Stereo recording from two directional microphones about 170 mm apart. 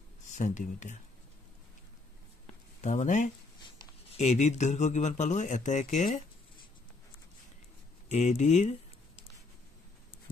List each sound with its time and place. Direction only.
0.3 s speech: 45° left (ahead or behind)
2.8 s speech: 45° left (ahead or behind)
8.1 s speech: 40° left (ahead or behind)
10.1 s a sound: 30° left (ahead or behind)